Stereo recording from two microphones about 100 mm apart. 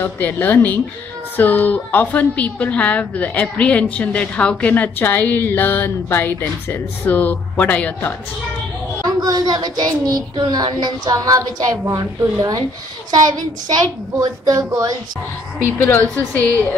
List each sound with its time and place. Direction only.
0.0 s a woman's voice: 20° left (ahead or behind)
9.0 s a woman's voice: 40° right (ahead or behind)
14.2 s a woman's voice: 40° right (ahead or behind)
15.6 s a woman's voice: 20° left (ahead or behind)